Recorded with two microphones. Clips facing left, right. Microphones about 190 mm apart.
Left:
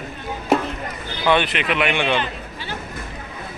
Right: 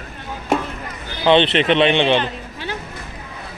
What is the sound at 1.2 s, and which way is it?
Speech, 25° right (ahead or behind).